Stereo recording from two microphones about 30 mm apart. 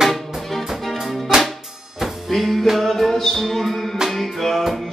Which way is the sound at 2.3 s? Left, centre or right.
Centre.